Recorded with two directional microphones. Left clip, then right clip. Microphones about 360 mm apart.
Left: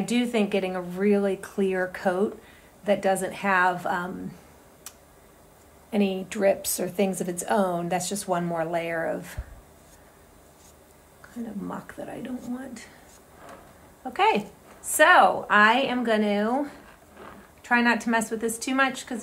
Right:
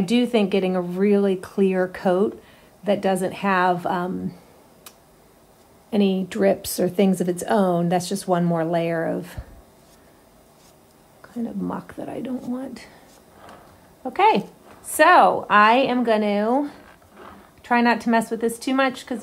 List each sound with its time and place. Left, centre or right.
0.0 s speech: right
5.9 s speech: right
11.6 s speech: centre
14.1 s speech: centre
17.6 s speech: centre